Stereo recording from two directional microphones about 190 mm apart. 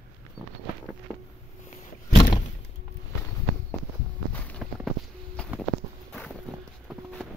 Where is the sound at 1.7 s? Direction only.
30° left (ahead or behind).